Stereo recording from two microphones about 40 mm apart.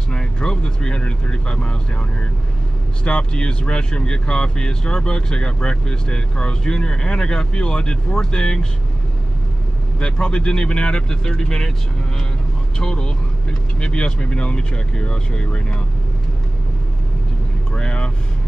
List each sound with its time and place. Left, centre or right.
0.1 s speech: left
9.9 s speech: left
12.7 s speech: centre
17.7 s speech: left